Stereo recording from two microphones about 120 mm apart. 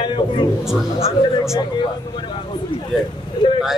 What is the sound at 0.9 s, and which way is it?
Speech, 55° left (ahead or behind).